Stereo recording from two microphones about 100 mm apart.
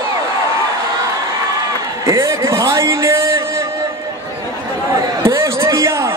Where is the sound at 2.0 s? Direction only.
30° right (ahead or behind).